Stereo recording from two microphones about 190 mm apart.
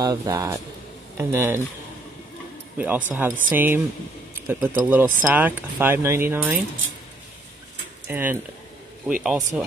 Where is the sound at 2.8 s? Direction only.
10° right (ahead or behind).